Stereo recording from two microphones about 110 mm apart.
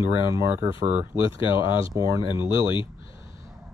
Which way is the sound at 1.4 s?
50° left (ahead or behind).